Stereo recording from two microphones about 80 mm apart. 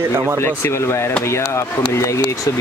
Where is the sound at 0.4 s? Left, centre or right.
Left.